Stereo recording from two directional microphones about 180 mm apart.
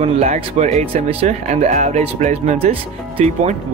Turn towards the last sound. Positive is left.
turn(degrees=-35)  # may be behind; listen again after turning